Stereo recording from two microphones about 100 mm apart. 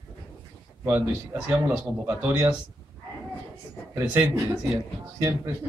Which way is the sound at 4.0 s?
25° right (ahead or behind).